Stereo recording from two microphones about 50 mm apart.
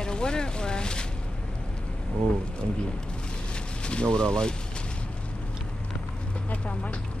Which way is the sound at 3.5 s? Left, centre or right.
Centre.